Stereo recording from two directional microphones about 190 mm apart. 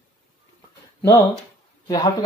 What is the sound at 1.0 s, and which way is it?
Speech, 20° left (ahead or behind).